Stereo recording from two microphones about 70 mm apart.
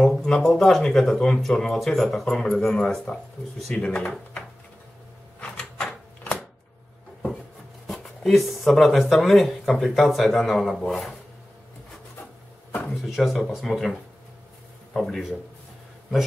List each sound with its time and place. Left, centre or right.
0.2 s speech: centre
5.4 s a sound: centre
7.8 s a sound: centre
9.2 s speech: centre
13.0 s speech: centre
15.0 s speech: centre